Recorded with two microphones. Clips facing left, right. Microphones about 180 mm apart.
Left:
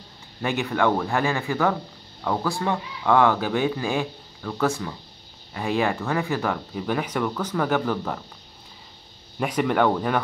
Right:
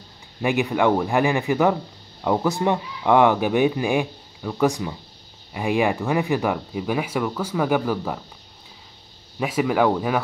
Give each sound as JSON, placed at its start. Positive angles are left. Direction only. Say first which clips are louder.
{"t": 0.4, "sound": "speech", "louder": "right 3 dB", "side_deg": -15}
{"t": 9.4, "sound": "speech", "louder": "right 1 dB", "side_deg": -5}